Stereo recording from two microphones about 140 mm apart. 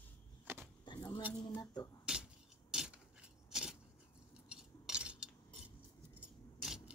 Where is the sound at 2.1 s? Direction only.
5° right (ahead or behind).